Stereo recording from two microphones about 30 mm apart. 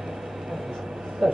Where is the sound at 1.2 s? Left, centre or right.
Centre.